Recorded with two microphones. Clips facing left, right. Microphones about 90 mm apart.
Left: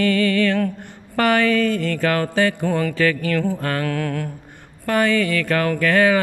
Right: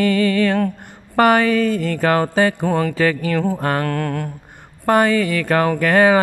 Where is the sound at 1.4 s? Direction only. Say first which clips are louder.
Right 1 dB; 30° right (ahead or behind).